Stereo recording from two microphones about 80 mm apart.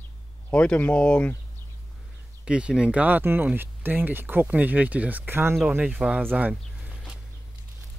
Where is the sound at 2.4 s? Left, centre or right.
Centre; by 5.6 s right.